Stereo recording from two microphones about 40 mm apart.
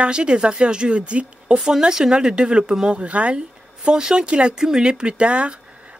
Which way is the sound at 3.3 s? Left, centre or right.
Centre.